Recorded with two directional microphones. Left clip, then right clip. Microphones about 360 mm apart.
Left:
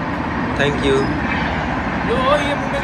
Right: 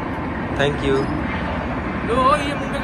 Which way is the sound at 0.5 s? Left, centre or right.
Centre.